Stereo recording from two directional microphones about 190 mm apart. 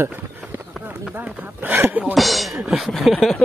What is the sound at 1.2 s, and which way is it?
Speech, 10° right (ahead or behind).